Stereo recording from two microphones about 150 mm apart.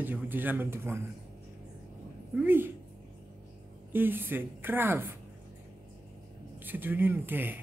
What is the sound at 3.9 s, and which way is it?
Speech, 15° right (ahead or behind).